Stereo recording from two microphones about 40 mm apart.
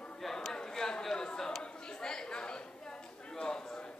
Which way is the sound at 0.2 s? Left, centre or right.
Centre.